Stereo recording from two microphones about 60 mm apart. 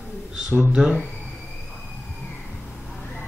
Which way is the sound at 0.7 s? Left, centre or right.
Centre.